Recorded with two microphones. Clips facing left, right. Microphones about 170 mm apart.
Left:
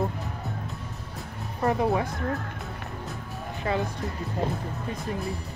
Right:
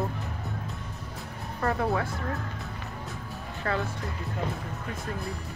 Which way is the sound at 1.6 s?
20° left (ahead or behind).